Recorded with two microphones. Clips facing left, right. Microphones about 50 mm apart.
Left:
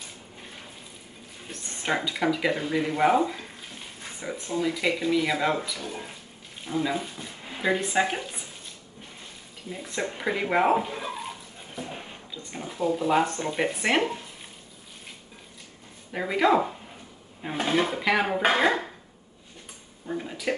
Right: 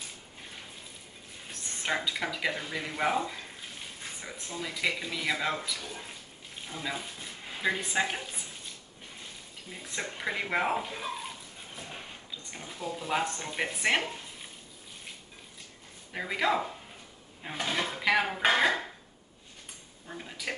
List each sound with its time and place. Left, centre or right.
1.5 s speech: centre
9.7 s speech: centre
16.1 s speech: centre
20.1 s speech: centre